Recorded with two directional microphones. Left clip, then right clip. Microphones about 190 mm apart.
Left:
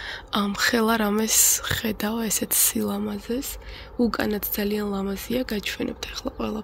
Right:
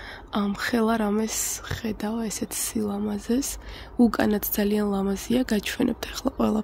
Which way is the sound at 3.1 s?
20° right (ahead or behind).